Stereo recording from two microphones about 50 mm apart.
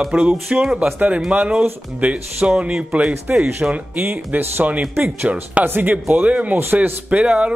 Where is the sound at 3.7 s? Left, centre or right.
Right.